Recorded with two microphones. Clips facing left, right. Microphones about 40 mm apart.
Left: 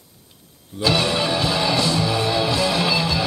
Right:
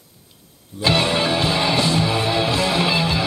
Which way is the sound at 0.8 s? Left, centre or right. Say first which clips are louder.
Right 1 dB; right.